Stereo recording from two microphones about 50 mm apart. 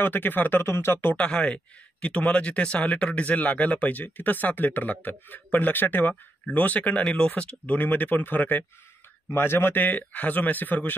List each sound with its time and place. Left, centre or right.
0.0 s speech: left
0.7 s speech: left
1.1 s speech: left
6.8 s speech: left
9.3 s speech: left